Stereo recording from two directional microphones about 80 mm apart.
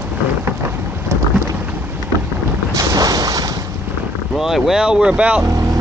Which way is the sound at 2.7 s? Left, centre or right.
Right.